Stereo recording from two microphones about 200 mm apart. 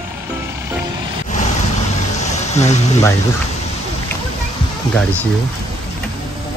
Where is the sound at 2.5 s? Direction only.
35° left (ahead or behind).